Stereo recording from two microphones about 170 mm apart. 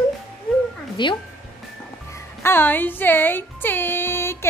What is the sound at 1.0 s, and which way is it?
Speech, 25° left (ahead or behind).